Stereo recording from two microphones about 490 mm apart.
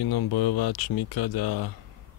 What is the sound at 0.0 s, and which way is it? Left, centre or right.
Speech, left.